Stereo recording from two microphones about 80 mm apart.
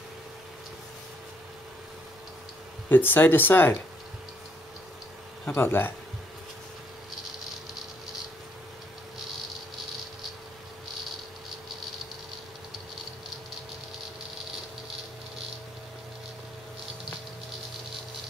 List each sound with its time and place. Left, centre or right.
2.9 s speech: left
5.5 s speech: left